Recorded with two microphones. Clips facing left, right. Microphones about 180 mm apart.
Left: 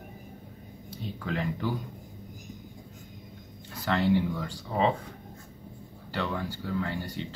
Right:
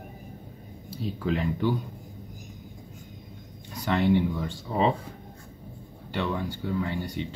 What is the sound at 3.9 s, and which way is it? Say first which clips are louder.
Speech: right 2 dB; 20° right (ahead or behind).